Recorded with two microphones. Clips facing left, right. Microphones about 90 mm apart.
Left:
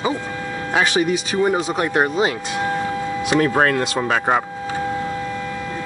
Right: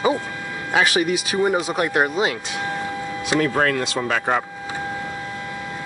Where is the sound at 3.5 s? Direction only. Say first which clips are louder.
Left 3 dB; 30° left (ahead or behind).